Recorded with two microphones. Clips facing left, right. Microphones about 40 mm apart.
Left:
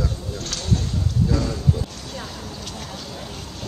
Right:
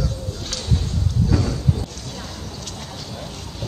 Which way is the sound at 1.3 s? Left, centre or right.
Right.